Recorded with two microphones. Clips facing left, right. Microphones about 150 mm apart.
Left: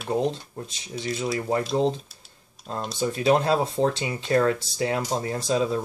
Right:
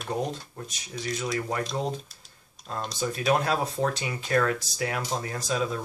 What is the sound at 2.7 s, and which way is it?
Speech, 30° left (ahead or behind).